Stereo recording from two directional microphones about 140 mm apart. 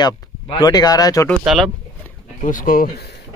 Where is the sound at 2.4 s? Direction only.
75° left (ahead or behind).